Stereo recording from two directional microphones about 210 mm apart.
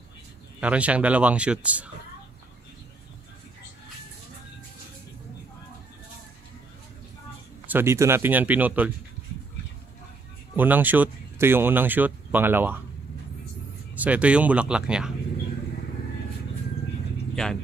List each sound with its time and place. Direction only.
0.6 s speech: 5° right (ahead or behind)
7.6 s speech: 10° right (ahead or behind)
10.5 s speech: 10° right (ahead or behind)
13.9 s speech: 5° right (ahead or behind)